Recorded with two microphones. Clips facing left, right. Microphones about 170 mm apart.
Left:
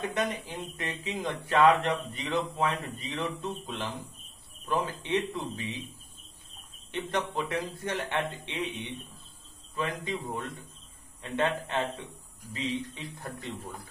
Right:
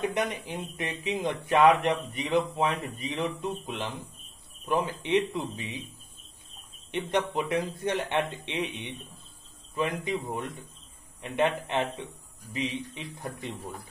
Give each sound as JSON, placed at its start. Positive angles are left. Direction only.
{"t": 0.0, "sound": "speech", "side_deg": -15}
{"t": 6.9, "sound": "speech", "side_deg": -15}